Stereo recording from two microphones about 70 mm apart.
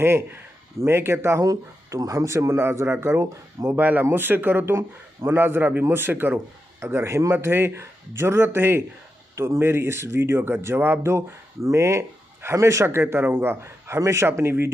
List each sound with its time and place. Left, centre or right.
0.0 s speech: right
1.4 s speech: right
3.7 s speech: right